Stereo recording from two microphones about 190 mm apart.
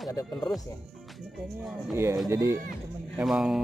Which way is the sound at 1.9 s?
15° right (ahead or behind).